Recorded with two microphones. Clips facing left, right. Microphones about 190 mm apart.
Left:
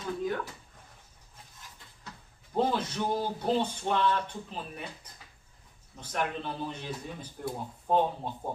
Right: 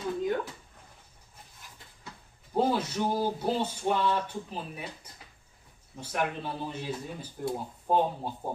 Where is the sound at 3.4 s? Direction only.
10° right (ahead or behind).